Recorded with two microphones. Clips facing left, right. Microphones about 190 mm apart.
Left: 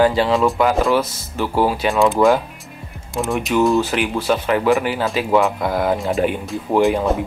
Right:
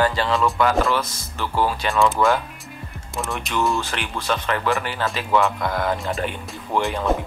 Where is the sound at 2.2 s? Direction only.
20° left (ahead or behind).